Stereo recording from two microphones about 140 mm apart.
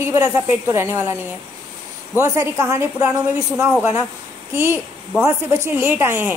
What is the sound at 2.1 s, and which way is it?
Speech, 20° right (ahead or behind).